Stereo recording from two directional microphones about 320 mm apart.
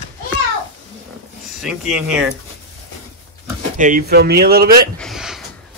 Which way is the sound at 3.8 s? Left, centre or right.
Right.